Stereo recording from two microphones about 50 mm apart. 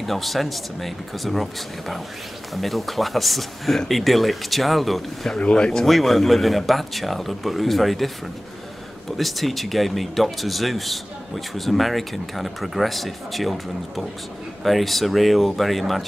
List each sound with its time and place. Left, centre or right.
0.0 s speech: centre
5.4 s speech: centre
5.7 s speech: centre
9.1 s speech: centre